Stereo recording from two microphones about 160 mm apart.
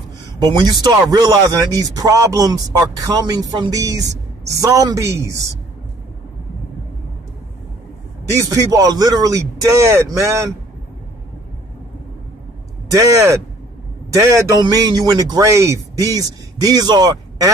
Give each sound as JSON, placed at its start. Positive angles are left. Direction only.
{"t": 0.4, "sound": "a man's voice", "side_deg": -25}
{"t": 8.4, "sound": "a man's voice", "side_deg": -20}
{"t": 12.9, "sound": "a man's voice", "side_deg": -20}